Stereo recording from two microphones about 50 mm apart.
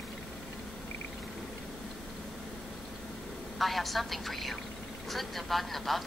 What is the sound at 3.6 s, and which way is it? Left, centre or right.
A woman's voice, centre.